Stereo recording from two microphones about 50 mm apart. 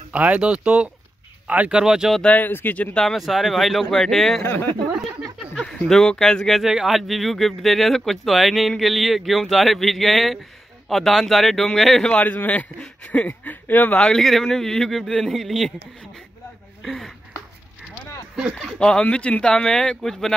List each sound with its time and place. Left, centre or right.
0.1 s speech: right
2.2 s speech: left
3.1 s speech: centre
4.4 s speech: left
5.9 s speech: centre
6.6 s speech: centre
12.1 s speech: left
13.9 s speech: centre
16.8 s speech: centre
18.8 s speech: centre